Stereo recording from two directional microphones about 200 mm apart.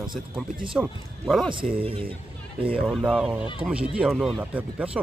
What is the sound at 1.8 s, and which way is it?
Speech, 25° right (ahead or behind).